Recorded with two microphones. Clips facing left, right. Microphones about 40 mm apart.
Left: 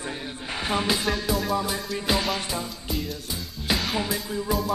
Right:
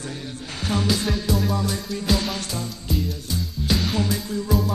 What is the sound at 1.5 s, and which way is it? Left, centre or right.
Music, centre.